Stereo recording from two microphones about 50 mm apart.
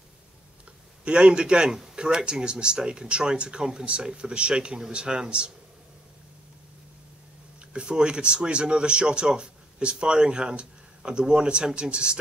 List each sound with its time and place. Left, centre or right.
1.0 s speech: right
7.7 s speech: centre